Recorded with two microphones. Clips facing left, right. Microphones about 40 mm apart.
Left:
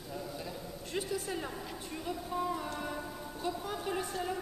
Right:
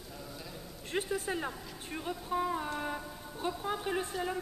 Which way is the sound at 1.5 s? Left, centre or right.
Centre.